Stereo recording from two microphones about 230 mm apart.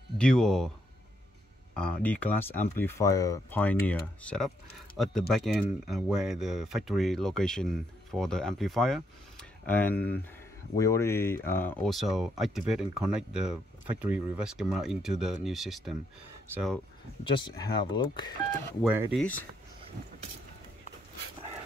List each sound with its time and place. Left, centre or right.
0.2 s speech: centre
1.8 s speech: centre
17.2 s speech: left
18.8 s speech: centre